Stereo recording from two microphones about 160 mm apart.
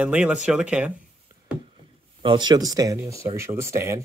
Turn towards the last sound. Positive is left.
turn(degrees=-15)  # may be behind; listen again after turning